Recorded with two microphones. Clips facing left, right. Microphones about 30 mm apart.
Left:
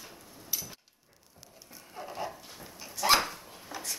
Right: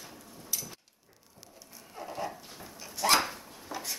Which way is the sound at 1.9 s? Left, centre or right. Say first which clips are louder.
Right 1 dB; centre.